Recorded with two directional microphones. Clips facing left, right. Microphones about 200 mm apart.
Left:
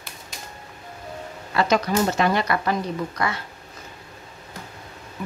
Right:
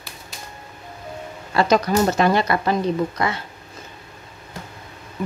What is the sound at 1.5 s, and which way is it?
Speech, 35° right (ahead or behind).